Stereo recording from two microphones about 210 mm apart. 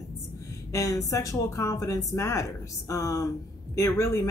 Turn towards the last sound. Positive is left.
turn(degrees=15)  # may be behind; listen again after turning